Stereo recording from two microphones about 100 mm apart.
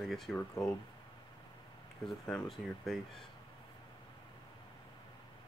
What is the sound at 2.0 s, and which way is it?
Speech, 10° left (ahead or behind).